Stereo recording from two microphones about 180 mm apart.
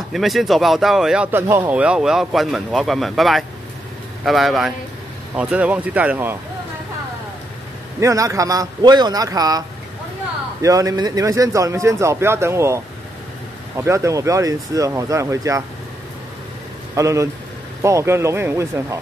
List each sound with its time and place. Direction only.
0.1 s speech: centre (ahead or behind)
8.0 s a man's voice: 15° right (ahead or behind)
16.9 s speech: 15° right (ahead or behind)